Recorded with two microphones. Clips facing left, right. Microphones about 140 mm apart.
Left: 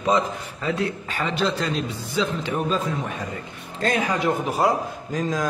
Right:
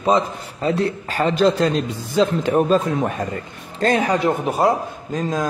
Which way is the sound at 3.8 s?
35° right (ahead or behind).